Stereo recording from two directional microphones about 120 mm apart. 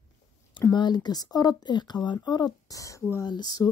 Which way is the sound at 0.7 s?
40° left (ahead or behind).